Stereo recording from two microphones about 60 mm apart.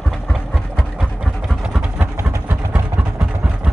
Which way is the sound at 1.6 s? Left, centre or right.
Centre.